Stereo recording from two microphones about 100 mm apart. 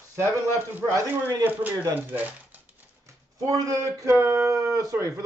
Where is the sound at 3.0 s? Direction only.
35° right (ahead or behind).